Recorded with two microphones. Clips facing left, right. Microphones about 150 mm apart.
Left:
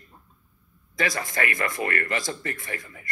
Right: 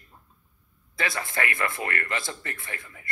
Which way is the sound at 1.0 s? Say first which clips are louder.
Left 2 dB; 40° left (ahead or behind).